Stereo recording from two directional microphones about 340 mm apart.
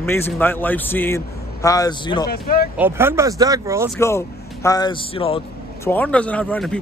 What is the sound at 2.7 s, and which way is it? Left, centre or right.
Speech, centre.